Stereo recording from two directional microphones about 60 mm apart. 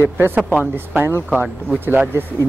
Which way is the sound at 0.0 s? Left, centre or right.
Right.